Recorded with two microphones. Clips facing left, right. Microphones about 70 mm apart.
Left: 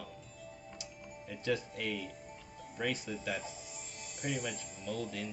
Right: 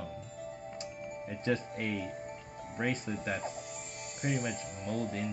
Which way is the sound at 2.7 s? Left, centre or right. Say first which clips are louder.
Right 3 dB; right.